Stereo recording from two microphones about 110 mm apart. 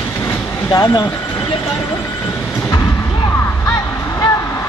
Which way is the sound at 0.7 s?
35° left (ahead or behind).